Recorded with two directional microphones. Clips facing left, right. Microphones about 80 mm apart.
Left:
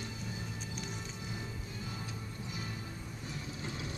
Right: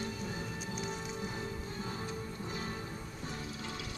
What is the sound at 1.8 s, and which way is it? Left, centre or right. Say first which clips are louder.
Music: right 4 dB; right.